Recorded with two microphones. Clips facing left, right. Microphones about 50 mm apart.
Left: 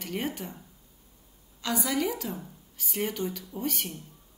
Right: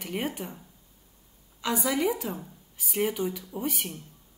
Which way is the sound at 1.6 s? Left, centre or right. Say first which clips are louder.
Right 2 dB; centre.